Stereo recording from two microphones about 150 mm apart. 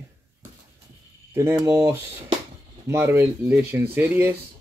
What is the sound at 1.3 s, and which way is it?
Speech, 15° right (ahead or behind).